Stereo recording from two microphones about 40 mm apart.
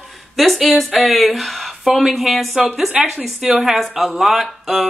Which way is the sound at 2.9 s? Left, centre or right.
Centre.